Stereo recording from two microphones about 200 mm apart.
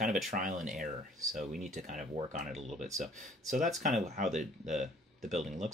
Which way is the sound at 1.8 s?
40° right (ahead or behind).